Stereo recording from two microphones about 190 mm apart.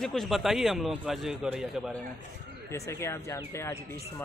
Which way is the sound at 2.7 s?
15° left (ahead or behind).